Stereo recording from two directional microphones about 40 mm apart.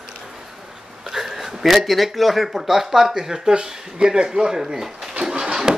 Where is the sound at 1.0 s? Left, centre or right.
Centre.